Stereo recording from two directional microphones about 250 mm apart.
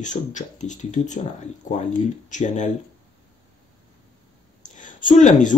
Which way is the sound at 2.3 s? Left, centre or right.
Left.